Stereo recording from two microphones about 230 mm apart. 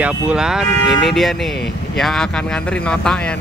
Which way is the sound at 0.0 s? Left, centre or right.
Centre.